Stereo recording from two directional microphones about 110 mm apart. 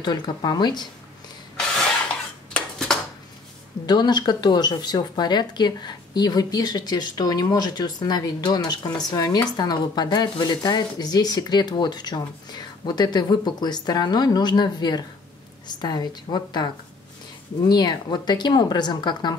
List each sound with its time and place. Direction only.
0.0 s speech: 40° left (ahead or behind)
2.5 s dishes: 5° left (ahead or behind)
3.8 s speech: 40° left (ahead or behind)